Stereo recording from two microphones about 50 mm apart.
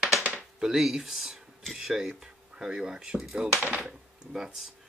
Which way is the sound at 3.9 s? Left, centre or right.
Centre.